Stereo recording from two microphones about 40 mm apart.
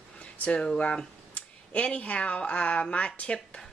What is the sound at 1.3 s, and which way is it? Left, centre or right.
Speech, left.